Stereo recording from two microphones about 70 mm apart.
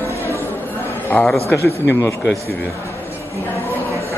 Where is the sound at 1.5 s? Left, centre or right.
Left.